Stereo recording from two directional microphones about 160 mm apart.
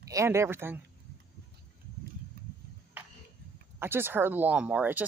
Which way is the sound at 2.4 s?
75° right (ahead or behind).